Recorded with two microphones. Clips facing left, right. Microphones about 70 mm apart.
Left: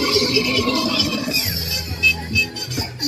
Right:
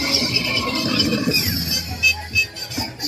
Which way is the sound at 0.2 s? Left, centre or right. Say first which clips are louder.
Left 4 dB; right.